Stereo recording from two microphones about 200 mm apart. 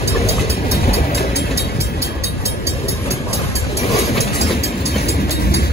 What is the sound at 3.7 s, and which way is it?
Vehicle, 30° left (ahead or behind).